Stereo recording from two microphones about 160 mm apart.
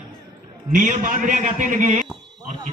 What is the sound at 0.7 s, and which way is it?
A man's voice, 55° right (ahead or behind).